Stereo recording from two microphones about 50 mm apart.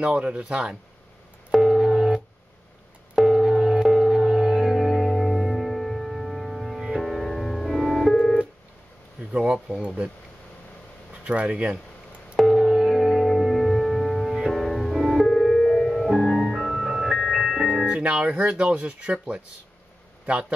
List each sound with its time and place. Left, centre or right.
0.0 s speech: right
1.5 s busy signal: centre
2.0 s music: centre
3.3 s music: centre
9.4 s speech: centre
11.2 s speech: right
12.4 s music: centre
18.2 s speech: right